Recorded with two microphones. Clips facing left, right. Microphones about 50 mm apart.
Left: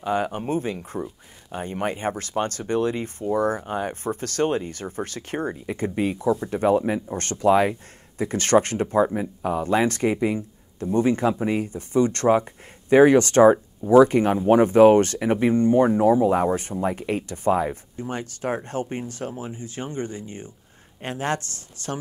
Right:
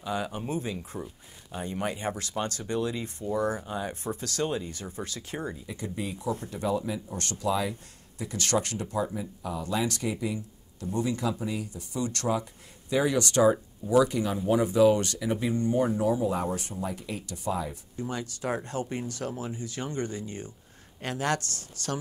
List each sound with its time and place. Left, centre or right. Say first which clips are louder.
0.0 s speech: left 7 dB; left